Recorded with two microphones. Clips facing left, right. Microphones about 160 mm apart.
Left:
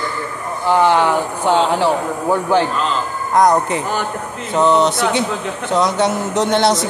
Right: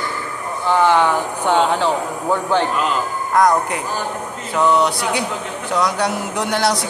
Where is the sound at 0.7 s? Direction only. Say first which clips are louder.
Left 1 dB; 15° left (ahead or behind).